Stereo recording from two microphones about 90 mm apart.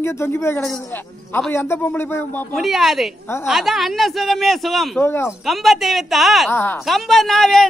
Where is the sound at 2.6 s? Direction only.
Centre (ahead or behind).